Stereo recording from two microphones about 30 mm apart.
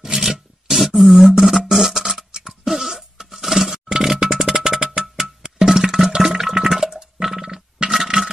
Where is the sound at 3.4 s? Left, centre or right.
Centre.